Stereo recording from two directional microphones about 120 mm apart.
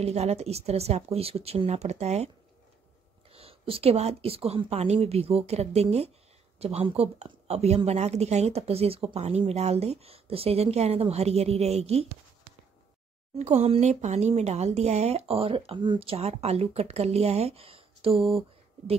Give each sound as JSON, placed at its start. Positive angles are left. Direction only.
{"t": 0.0, "sound": "speech", "side_deg": -65}
{"t": 13.4, "sound": "speech", "side_deg": -60}